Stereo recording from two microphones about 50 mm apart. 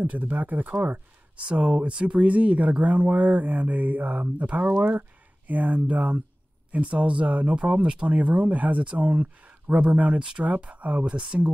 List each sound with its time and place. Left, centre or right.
0.0 s speech: right
1.3 s speech: right